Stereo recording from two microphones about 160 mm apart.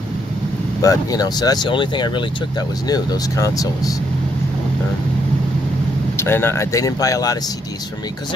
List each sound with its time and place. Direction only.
0.8 s speech: 25° left (ahead or behind)
6.1 s speech: 15° left (ahead or behind)